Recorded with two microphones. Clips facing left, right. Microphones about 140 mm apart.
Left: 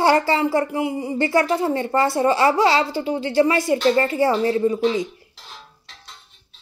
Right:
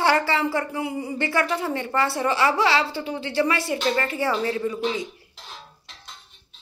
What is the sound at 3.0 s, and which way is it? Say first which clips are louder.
A woman's voice: left 5 dB; 25° left (ahead or behind).